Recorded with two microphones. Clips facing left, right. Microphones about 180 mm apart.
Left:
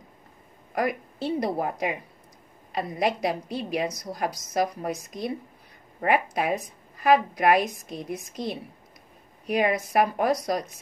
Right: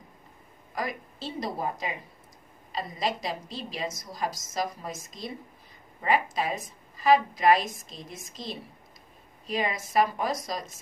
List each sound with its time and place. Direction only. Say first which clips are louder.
0.7 s a woman's voice: left 7 dB; 65° left (ahead or behind)